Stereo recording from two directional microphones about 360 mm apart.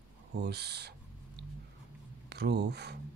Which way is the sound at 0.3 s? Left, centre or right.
Right.